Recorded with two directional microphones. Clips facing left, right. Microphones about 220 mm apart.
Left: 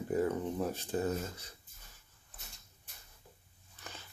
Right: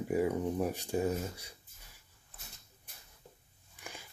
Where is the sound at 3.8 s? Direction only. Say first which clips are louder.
Right 2 dB; 10° right (ahead or behind).